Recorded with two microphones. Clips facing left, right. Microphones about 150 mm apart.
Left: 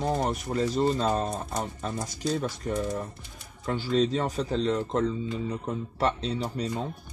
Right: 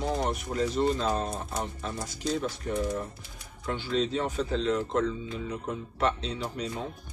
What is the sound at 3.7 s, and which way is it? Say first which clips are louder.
Speech: left 3 dB; 40° left (ahead or behind).